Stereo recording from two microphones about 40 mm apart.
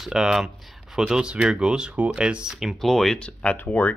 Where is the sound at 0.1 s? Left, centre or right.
Centre.